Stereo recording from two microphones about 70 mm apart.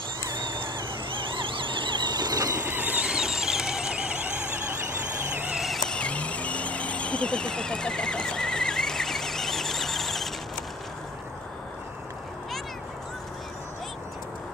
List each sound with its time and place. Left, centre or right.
2.0 s squeal: right
2.6 s squeal: right
5.6 s vehicle: centre
5.9 s vehicle: centre